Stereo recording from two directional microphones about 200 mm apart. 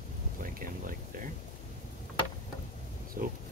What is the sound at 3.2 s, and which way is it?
Pig, 45° right (ahead or behind).